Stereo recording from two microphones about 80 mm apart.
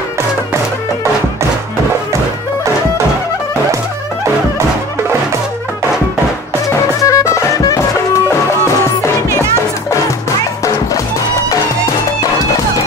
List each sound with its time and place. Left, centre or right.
6.7 s music: left